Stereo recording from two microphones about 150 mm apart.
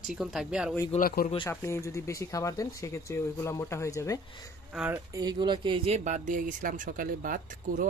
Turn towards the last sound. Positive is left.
turn(degrees=-65)  # may be behind; listen again after turning